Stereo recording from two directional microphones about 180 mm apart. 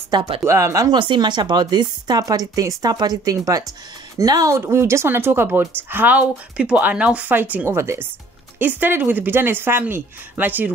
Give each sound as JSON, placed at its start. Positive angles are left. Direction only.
{"t": 0.1, "sound": "speech", "side_deg": -30}
{"t": 0.5, "sound": "speech", "side_deg": -15}